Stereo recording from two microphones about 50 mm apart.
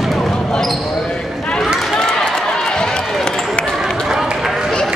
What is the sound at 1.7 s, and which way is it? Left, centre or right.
Run, centre.